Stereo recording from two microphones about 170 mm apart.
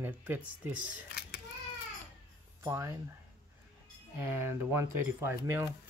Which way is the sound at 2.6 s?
15° right (ahead or behind).